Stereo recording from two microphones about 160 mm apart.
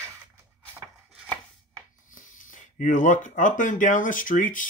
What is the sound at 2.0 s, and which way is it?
Speech, 55° left (ahead or behind).